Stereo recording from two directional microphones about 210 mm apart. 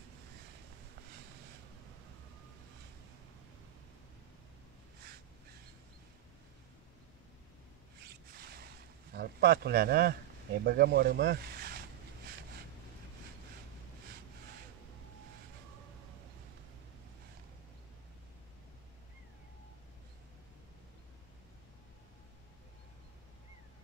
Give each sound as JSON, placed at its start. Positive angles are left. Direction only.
{"t": 8.4, "sound": "boat", "side_deg": -50}
{"t": 9.1, "sound": "speech", "side_deg": -50}